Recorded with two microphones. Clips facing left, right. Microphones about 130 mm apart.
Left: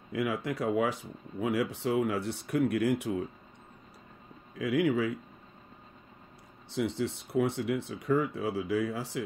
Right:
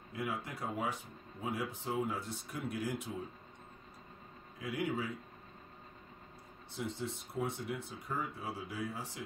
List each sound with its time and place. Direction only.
0.1 s speech: 90° left; by 3.3 s 70° left (ahead or behind)
4.6 s speech: 90° left
6.7 s speech: 80° left